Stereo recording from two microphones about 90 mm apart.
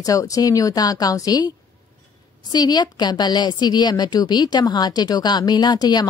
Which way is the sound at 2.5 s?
50° left (ahead or behind).